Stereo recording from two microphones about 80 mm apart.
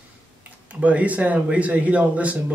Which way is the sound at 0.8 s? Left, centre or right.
Centre.